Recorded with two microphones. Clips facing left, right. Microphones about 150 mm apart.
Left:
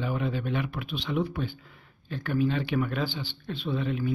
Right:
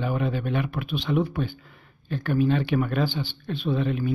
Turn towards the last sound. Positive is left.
turn(degrees=-55)  # may be behind; listen again after turning